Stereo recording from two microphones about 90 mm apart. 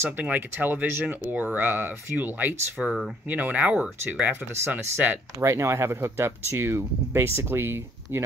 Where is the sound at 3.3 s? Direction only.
20° right (ahead or behind).